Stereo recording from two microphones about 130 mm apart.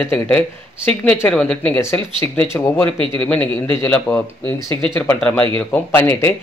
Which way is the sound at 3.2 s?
10° left (ahead or behind).